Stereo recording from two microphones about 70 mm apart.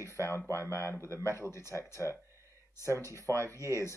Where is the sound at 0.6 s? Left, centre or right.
Left.